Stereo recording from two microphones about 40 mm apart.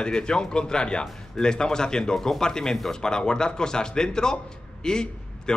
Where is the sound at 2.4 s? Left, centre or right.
Centre.